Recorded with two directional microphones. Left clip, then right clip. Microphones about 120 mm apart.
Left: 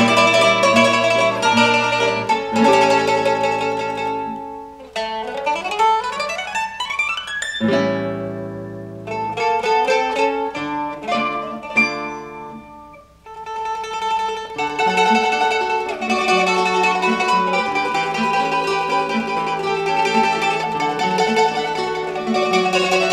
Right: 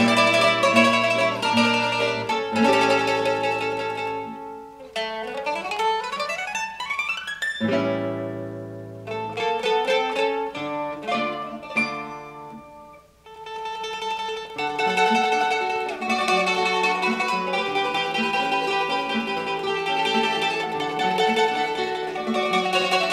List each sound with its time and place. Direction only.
0.0 s music: 30° right (ahead or behind)
7.6 s music: 15° left (ahead or behind)
9.1 s music: 35° right (ahead or behind)
13.6 s music: 30° right (ahead or behind)